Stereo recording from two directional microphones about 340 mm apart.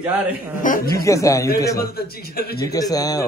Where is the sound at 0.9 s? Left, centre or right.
Centre.